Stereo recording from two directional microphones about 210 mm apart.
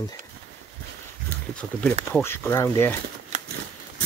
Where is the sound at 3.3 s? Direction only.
35° right (ahead or behind).